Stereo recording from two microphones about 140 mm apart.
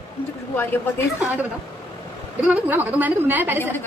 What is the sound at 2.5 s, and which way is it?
A woman's voice, 10° right (ahead or behind).